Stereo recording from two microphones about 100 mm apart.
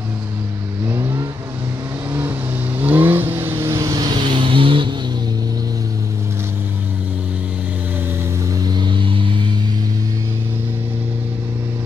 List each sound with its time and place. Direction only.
0.8 s vehicle: 25° right (ahead or behind)
2.8 s vehicle: 20° right (ahead or behind); by 4.9 s 55° right (ahead or behind)
8.6 s music: 50° right (ahead or behind)